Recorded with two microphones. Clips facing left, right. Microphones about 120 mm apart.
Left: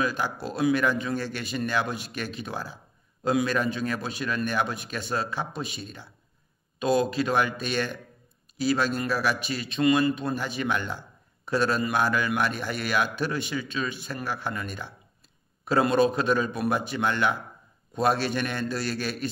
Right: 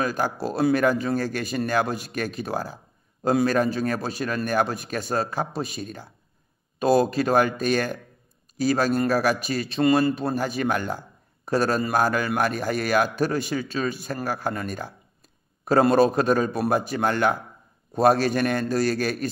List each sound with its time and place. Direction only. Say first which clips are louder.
0.0 s a man's voice: right 3 dB; 45° right (ahead or behind)